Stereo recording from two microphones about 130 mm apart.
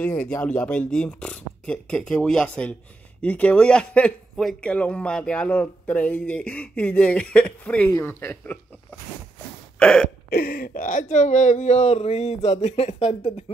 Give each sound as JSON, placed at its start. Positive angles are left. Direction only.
{"t": 0.0, "sound": "speech", "side_deg": 10}
{"t": 9.8, "sound": "hiccup", "side_deg": 5}
{"t": 10.5, "sound": "speech", "side_deg": 90}